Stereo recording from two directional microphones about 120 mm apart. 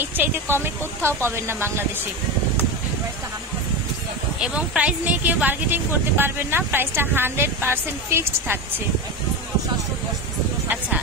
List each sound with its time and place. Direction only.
0.0 s speech: 20° right (ahead or behind)
4.4 s speech: 10° right (ahead or behind)